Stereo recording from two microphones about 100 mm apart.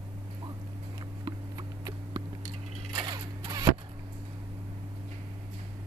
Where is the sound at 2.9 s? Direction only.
50° right (ahead or behind).